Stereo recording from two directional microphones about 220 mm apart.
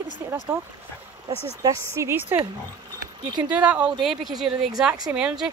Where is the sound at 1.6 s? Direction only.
10° right (ahead or behind).